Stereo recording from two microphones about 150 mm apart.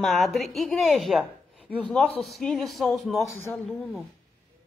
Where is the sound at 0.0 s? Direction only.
Centre (ahead or behind).